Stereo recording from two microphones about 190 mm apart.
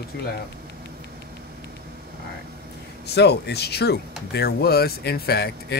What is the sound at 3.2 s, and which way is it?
Speech, 60° left (ahead or behind).